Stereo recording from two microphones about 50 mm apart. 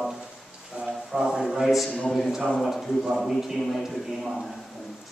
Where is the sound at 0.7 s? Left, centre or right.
Right.